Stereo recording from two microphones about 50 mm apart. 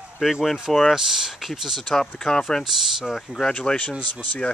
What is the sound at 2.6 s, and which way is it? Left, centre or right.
Speech, centre.